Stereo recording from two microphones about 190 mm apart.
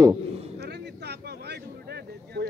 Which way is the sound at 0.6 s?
60° right (ahead or behind).